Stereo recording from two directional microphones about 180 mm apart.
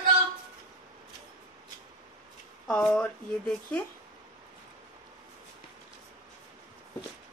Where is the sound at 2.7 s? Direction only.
5° left (ahead or behind).